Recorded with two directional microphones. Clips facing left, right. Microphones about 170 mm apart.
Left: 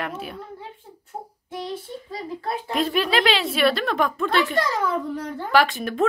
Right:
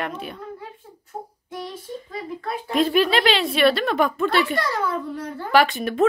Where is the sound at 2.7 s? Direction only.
Centre (ahead or behind).